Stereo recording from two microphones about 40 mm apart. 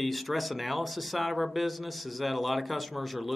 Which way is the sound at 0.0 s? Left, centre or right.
Centre.